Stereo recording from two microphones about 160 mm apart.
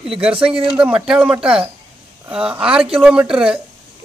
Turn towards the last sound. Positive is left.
turn(degrees=-5)  # may be behind; listen again after turning